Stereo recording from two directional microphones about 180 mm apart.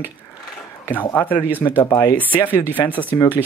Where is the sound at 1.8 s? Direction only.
20° left (ahead or behind).